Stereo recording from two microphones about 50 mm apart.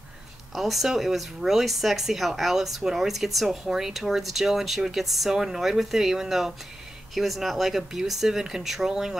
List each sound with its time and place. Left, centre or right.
0.6 s speech: centre